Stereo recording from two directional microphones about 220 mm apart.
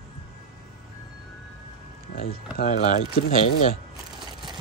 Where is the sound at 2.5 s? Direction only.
35° left (ahead or behind).